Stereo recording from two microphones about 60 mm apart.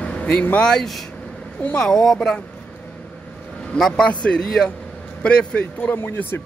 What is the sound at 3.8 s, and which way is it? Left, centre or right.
Speech, centre.